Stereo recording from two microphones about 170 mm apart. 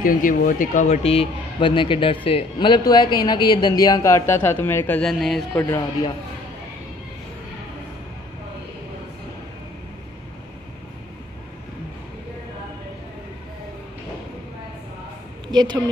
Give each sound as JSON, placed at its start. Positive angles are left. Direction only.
{"t": 0.0, "sound": "speech", "side_deg": 55}
{"t": 15.4, "sound": "a woman's voice", "side_deg": -25}